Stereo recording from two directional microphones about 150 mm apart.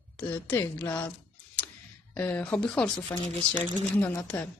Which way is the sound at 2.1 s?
10° left (ahead or behind).